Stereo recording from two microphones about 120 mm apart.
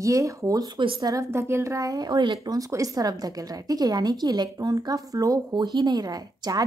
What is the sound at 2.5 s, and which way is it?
A woman's voice, 30° right (ahead or behind).